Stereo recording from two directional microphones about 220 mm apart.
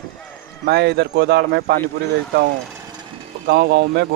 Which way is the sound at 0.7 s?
50° right (ahead or behind).